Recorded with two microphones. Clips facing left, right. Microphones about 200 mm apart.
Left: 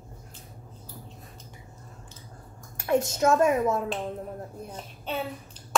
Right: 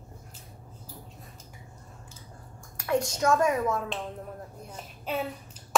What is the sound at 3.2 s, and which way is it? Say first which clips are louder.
Speech: left 3 dB; 25° left (ahead or behind).